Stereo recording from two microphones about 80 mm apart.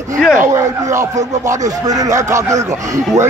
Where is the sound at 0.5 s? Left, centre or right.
Right.